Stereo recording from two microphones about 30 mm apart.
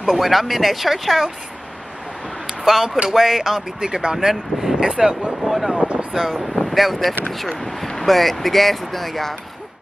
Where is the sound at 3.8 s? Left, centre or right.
Right.